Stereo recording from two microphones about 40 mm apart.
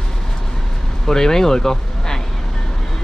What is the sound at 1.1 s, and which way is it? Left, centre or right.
Speech, centre.